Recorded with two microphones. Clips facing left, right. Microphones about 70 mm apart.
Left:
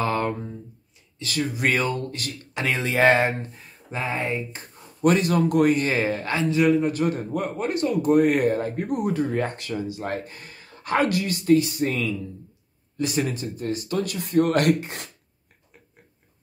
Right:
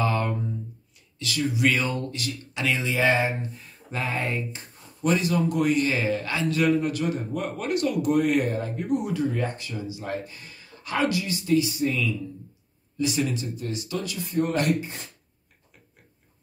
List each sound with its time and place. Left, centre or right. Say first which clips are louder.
0.0 s a sound: left 1 dB; left
1.2 s speech: right 1 dB; left
3.9 s speech: left 2 dB; left
4.5 s speech: even; left
5.7 s a man's voice: left 2 dB; left
6.5 s a man's voice: left 3 dB; centre
6.9 s speech: left 3 dB; left